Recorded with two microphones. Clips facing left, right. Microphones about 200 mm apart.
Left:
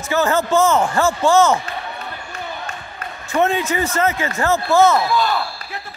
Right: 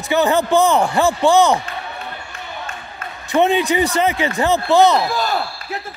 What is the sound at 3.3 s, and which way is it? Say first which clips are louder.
Speech: right 3 dB; 20° right (ahead or behind).